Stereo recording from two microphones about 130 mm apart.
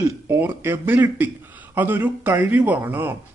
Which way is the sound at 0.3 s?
20° right (ahead or behind).